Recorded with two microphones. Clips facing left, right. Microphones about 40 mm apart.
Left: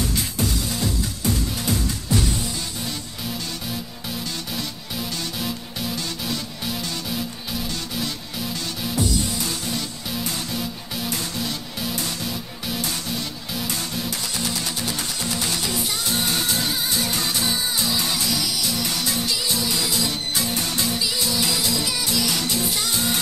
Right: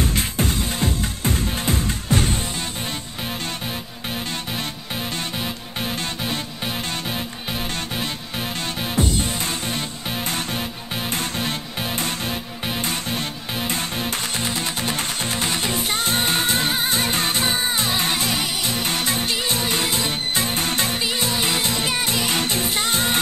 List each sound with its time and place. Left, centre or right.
0.0 s music: right
5.4 s music: right